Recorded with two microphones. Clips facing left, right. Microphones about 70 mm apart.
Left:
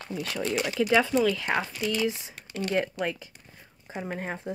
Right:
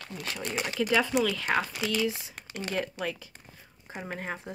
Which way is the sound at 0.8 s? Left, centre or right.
Left.